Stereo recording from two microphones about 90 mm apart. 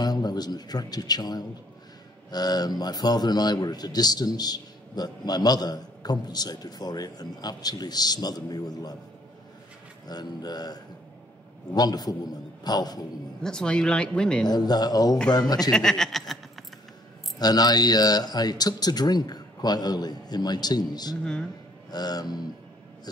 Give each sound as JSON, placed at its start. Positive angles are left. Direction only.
{"t": 0.0, "sound": "a man's voice", "side_deg": 50}
{"t": 10.0, "sound": "a man's voice", "side_deg": 50}
{"t": 13.4, "sound": "speech", "side_deg": 10}
{"t": 14.4, "sound": "a man's voice", "side_deg": 50}
{"t": 15.7, "sound": "speech", "side_deg": 5}
{"t": 17.4, "sound": "a man's voice", "side_deg": 45}
{"t": 21.2, "sound": "speech", "side_deg": 10}
{"t": 21.9, "sound": "a man's voice", "side_deg": 50}